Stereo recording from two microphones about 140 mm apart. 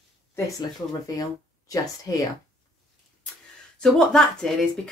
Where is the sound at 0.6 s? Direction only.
25° left (ahead or behind).